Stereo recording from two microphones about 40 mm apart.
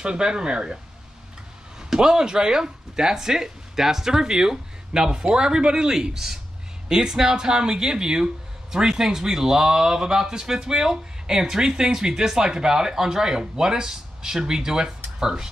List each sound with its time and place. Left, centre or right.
0.0 s speech: centre
1.8 s speech: centre